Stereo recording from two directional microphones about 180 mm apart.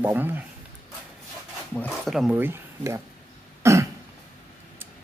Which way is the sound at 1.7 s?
10° left (ahead or behind).